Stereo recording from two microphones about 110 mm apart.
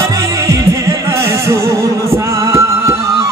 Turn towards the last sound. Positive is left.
turn(degrees=-25)  # may be behind; listen again after turning